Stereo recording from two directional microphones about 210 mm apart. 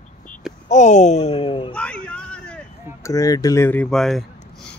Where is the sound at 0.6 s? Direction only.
35° left (ahead or behind).